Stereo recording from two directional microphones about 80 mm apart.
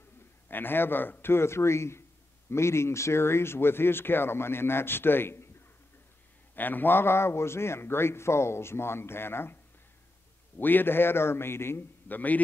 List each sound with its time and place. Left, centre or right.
0.5 s speech: left
6.5 s a man's voice: left
10.6 s speech: left